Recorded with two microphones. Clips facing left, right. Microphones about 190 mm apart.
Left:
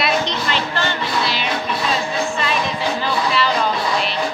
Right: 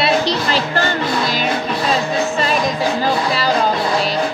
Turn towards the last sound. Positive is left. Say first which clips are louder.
# right 2 dB
turn(degrees=-40)  # may be behind; listen again after turning